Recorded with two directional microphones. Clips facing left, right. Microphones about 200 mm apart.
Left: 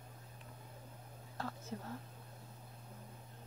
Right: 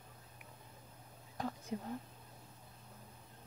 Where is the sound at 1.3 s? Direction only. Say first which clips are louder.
Right 3 dB; 15° right (ahead or behind).